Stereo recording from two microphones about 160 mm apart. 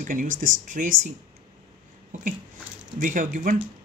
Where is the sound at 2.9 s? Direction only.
55° right (ahead or behind).